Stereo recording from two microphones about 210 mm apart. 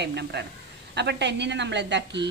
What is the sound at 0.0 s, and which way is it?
A woman's voice, 55° right (ahead or behind).